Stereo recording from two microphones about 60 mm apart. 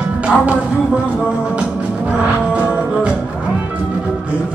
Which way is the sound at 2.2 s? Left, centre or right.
Centre.